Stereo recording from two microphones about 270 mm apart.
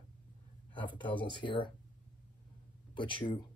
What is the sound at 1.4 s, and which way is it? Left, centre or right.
Speech, centre.